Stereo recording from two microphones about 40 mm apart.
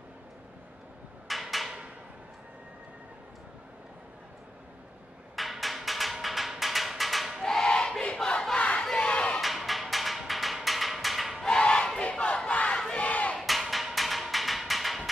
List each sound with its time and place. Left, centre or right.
1.2 s a sound: centre
5.3 s a sound: centre
7.4 s battle cry: centre
8.2 s crowd: centre
8.5 s crowd: left
9.4 s music: centre
11.4 s battle cry: centre; by 13.4 s left
13.4 s music: centre